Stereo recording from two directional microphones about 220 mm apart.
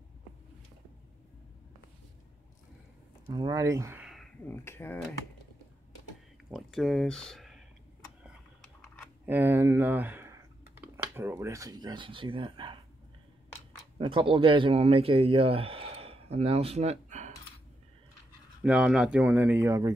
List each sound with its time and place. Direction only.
3.3 s speech: 20° right (ahead or behind); by 4.9 s 10° left (ahead or behind)
6.5 s speech: centre (ahead or behind)
8.8 s a sound: 10° right (ahead or behind)
11.1 s speech: 10° right (ahead or behind)
13.9 s a man's voice: 25° right (ahead or behind)
18.6 s speech: 5° right (ahead or behind)